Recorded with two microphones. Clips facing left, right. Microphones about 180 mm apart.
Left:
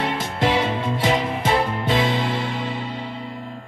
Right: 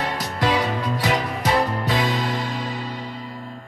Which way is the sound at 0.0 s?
25° left (ahead or behind).